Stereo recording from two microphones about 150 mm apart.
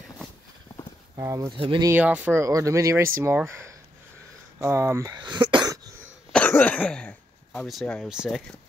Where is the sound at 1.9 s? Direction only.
10° right (ahead or behind).